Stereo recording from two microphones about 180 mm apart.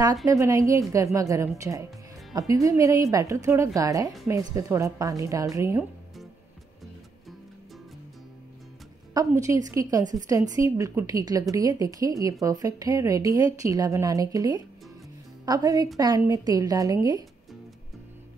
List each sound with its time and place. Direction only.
0.0 s a woman's voice: 20° right (ahead or behind)
9.1 s a woman's voice: 15° right (ahead or behind)